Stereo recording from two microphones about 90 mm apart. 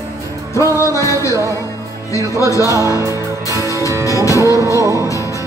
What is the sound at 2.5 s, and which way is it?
Music, 35° right (ahead or behind).